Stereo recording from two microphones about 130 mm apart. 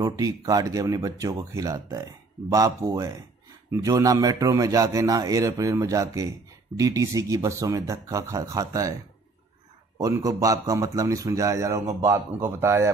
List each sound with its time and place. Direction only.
0.0 s speech: 25° right (ahead or behind)
9.9 s speech: 25° right (ahead or behind)